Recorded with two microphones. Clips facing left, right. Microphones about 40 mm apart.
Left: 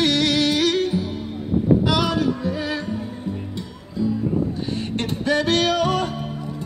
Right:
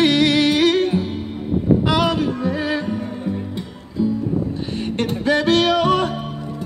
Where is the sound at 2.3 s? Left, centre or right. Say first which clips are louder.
Right 2 dB; right.